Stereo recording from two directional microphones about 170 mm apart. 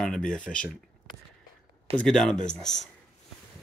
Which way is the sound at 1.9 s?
5° left (ahead or behind).